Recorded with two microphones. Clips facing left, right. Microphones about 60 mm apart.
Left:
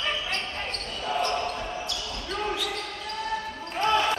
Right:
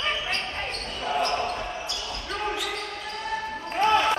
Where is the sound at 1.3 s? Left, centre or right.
Centre.